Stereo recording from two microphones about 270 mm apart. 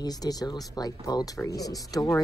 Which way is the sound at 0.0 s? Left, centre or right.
Centre.